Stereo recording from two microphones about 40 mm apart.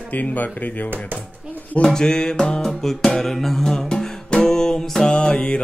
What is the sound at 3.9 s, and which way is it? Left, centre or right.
Music, centre.